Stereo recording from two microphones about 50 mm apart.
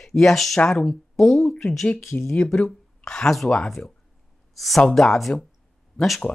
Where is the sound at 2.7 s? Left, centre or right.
Centre.